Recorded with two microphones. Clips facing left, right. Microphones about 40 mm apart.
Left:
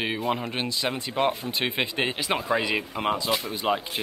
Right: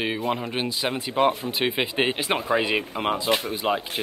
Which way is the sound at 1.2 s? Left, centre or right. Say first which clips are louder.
Right 4 dB; right.